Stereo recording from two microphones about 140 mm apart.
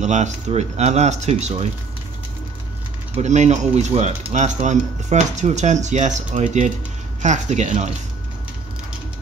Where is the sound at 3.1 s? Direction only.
55° right (ahead or behind).